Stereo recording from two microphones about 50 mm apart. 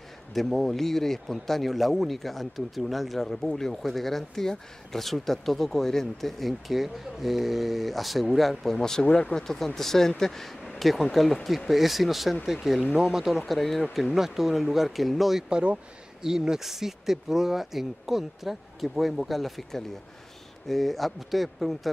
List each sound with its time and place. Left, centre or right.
0.3 s speech: centre
13.5 s speech: centre
15.5 s speech: right
16.2 s speech: centre